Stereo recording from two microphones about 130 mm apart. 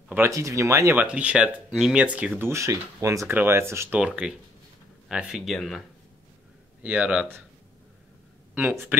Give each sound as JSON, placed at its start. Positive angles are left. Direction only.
{"t": 0.1, "sound": "speech", "side_deg": -20}
{"t": 1.0, "sound": "speech", "side_deg": -10}
{"t": 4.0, "sound": "speech", "side_deg": -5}
{"t": 8.5, "sound": "speech", "side_deg": -15}